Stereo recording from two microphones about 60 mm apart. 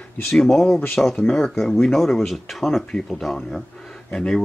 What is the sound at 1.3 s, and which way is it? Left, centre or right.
Speech, centre.